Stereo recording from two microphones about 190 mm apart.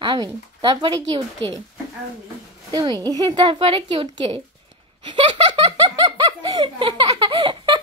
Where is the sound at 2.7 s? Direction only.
25° right (ahead or behind).